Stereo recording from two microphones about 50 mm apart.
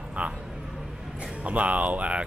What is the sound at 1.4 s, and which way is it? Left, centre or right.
Speech, right.